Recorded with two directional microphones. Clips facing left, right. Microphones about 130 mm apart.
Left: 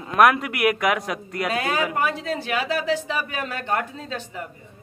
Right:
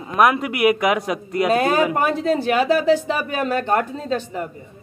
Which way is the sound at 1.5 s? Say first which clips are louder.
Right 6 dB; 35° right (ahead or behind).